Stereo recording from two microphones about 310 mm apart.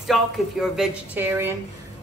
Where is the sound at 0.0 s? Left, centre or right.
Centre.